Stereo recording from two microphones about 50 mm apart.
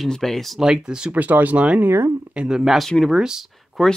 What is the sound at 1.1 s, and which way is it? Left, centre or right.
Speech, right.